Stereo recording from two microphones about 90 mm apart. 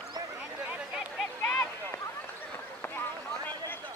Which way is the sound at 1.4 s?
15° left (ahead or behind).